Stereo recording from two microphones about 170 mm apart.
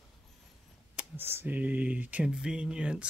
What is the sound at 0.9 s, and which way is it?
Speech, 15° right (ahead or behind).